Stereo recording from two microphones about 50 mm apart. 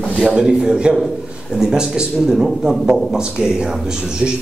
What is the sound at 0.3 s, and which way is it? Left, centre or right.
Speech, centre.